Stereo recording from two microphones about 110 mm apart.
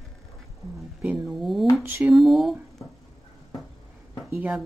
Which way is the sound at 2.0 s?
Centre (ahead or behind).